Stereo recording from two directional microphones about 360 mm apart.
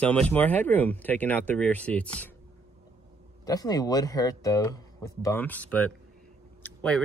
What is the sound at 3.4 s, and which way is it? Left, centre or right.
Speech, centre.